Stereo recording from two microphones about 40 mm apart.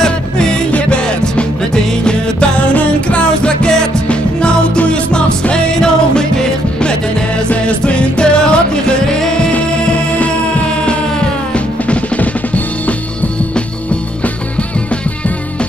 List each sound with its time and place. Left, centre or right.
0.0 s music: centre
2.0 s music: left
2.7 s music: left
3.3 s music: left
10.1 s music: left